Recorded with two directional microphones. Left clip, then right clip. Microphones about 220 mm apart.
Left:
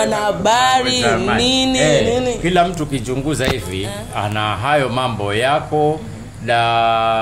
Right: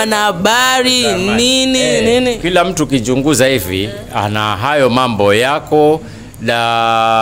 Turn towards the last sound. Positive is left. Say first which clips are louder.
# right 3 dB
turn(degrees=-50)  # may be behind; listen again after turning